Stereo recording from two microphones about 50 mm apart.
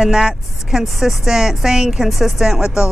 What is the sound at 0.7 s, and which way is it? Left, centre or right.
A woman's voice, centre.